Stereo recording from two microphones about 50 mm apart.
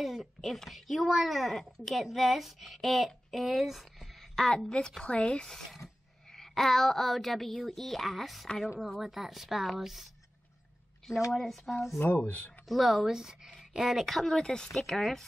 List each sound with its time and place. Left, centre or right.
0.0 s a woman's voice: centre
11.3 s a woman's voice: centre
12.3 s speech: left
12.6 s a woman's voice: centre
13.9 s speech: centre